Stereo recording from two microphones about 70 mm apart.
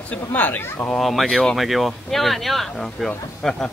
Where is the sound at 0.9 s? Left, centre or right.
Centre.